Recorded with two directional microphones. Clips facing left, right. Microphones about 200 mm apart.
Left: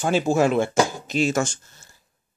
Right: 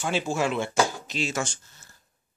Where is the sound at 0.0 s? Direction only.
45° left (ahead or behind).